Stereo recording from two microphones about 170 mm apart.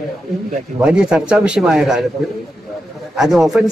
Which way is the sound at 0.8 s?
5° right (ahead or behind).